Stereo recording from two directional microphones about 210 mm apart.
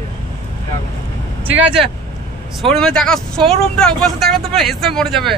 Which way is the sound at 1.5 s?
5° right (ahead or behind).